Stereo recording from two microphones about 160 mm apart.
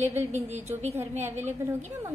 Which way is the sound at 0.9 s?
15° right (ahead or behind).